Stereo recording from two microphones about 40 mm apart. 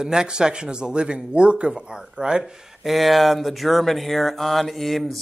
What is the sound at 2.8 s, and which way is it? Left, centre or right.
Speech, centre.